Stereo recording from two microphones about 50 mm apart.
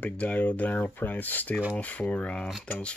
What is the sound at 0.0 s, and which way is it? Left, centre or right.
Speech, left.